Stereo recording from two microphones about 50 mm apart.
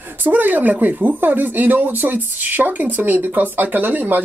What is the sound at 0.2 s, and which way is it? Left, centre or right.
Speech, right.